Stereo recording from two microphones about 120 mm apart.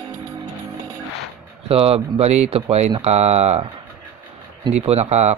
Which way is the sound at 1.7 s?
55° right (ahead or behind).